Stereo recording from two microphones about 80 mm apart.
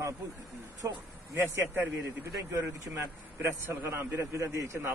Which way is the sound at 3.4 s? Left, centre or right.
Right.